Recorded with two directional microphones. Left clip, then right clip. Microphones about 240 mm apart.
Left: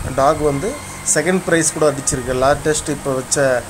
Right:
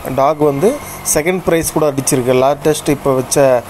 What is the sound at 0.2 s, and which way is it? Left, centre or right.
A man's voice, centre.